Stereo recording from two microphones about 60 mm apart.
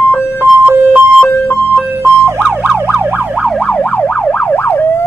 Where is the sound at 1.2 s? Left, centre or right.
Left.